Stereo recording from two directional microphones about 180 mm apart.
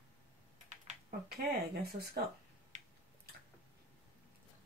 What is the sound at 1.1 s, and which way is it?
Speech, 60° right (ahead or behind).